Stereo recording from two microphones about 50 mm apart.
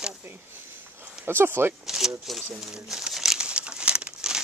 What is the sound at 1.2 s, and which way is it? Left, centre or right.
Speech, right.